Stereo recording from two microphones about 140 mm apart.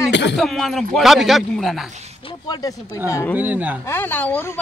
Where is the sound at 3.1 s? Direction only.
20° left (ahead or behind).